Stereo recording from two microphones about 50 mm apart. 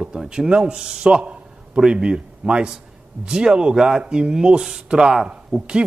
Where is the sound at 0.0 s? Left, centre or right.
Centre.